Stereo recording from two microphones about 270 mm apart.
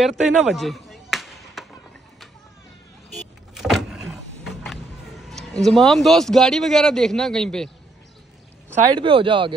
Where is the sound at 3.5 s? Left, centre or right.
Centre.